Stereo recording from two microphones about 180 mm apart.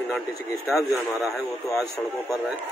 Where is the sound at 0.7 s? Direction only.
Centre (ahead or behind).